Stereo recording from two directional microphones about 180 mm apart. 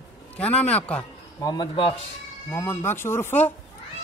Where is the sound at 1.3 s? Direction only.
20° left (ahead or behind).